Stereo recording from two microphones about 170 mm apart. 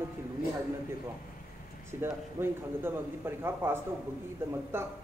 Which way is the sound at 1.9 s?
15° right (ahead or behind).